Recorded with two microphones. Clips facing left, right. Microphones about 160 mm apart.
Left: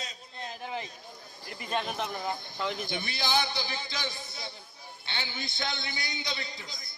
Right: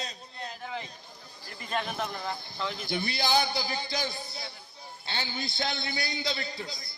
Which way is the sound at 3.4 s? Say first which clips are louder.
Right 3 dB; 40° right (ahead or behind).